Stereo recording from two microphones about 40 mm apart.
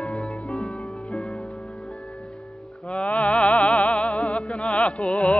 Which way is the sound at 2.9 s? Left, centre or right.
Left.